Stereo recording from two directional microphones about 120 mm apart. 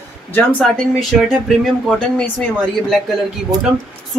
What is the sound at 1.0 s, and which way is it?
Speech, centre (ahead or behind).